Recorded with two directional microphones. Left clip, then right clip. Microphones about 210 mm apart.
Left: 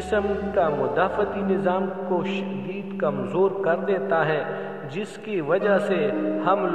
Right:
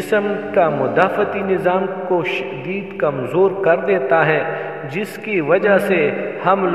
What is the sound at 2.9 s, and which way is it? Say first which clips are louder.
A man's voice: right 6 dB; 20° right (ahead or behind).